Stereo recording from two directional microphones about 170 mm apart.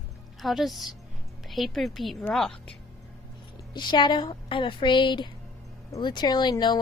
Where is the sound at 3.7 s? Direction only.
25° left (ahead or behind).